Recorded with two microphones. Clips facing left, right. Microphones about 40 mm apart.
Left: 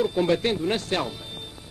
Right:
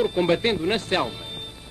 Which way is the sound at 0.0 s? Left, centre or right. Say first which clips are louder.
Right 1 dB; right.